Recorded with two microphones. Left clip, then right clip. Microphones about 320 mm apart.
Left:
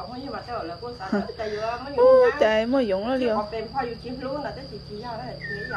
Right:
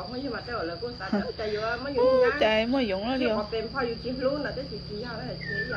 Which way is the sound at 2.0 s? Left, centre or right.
Left.